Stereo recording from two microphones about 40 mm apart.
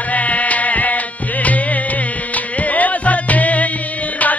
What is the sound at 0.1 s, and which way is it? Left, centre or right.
Music, left.